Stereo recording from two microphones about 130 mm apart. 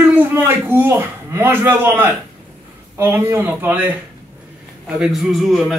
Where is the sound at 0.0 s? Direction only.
15° right (ahead or behind).